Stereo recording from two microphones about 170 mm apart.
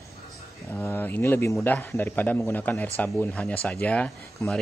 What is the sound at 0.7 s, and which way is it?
Speech, 10° left (ahead or behind).